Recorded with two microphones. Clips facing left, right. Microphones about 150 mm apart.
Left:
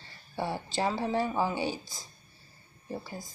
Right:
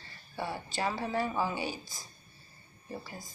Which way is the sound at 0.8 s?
20° left (ahead or behind).